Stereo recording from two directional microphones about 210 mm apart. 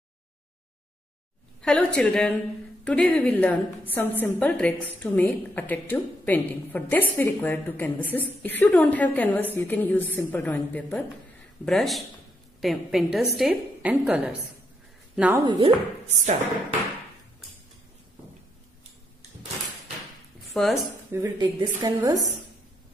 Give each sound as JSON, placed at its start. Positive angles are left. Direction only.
{"t": 1.6, "sound": "a woman's voice", "side_deg": 5}
{"t": 15.4, "sound": "speech", "side_deg": -20}
{"t": 16.1, "sound": "speech", "side_deg": -35}
{"t": 20.5, "sound": "a woman's voice", "side_deg": 0}
{"t": 21.1, "sound": "a woman's voice", "side_deg": -15}